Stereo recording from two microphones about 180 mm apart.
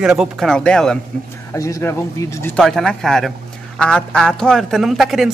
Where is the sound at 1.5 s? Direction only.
15° left (ahead or behind).